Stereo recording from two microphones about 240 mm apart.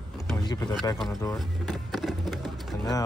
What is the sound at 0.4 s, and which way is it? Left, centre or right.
Speech, centre.